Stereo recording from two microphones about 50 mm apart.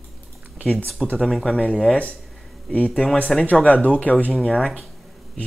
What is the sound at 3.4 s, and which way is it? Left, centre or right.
Speech, left.